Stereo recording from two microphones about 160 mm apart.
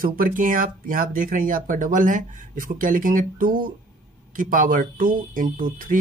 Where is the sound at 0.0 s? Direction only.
60° right (ahead or behind).